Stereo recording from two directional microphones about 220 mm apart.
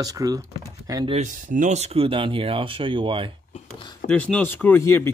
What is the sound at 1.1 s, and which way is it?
Speech, 35° right (ahead or behind).